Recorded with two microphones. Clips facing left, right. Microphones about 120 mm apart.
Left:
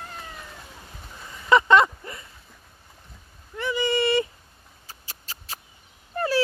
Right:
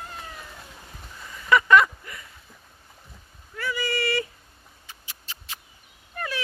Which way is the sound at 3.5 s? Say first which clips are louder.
Left 5 dB; 25° left (ahead or behind).